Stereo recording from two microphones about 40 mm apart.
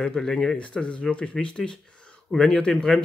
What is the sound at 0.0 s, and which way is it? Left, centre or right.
Speech, centre.